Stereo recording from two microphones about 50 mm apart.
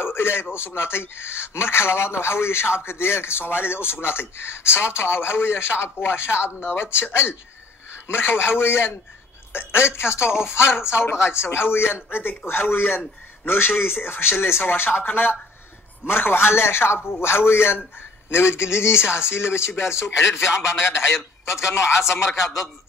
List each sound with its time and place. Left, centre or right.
0.0 s a man's voice: left